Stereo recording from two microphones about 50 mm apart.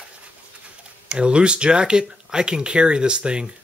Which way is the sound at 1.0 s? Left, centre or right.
Right.